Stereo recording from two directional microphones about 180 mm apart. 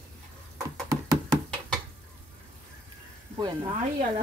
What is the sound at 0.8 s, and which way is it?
Music, 20° right (ahead or behind).